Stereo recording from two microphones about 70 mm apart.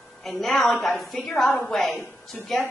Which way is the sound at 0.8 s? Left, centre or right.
Centre.